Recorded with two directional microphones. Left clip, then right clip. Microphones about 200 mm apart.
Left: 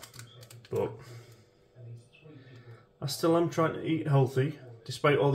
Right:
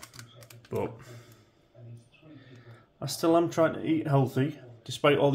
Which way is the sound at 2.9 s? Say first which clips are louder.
Right 2 dB; 55° right (ahead or behind).